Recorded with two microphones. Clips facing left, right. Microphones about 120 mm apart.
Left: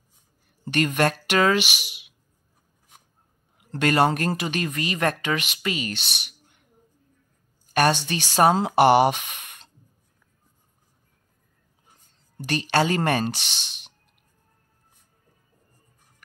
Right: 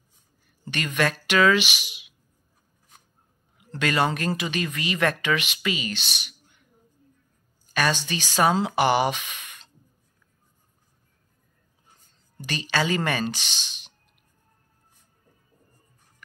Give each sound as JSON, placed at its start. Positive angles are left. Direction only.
{"t": 0.7, "sound": "speech", "side_deg": 50}
{"t": 3.7, "sound": "speech", "side_deg": 50}
{"t": 7.7, "sound": "speech", "side_deg": 55}
{"t": 12.4, "sound": "speech", "side_deg": 55}